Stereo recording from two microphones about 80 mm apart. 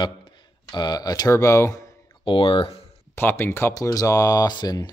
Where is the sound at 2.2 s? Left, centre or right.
Left.